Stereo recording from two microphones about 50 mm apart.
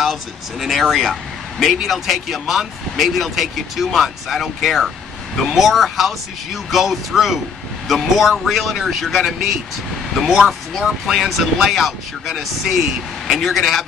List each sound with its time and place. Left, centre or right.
0.0 s speech: centre